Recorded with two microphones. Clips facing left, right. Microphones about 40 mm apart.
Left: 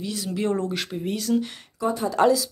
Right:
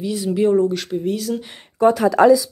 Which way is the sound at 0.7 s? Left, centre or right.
Centre.